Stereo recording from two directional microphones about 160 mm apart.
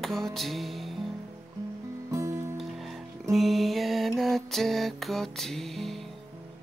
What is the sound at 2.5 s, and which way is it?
Music, centre (ahead or behind).